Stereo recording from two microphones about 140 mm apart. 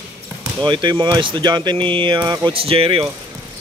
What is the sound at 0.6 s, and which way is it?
Speech, 35° right (ahead or behind).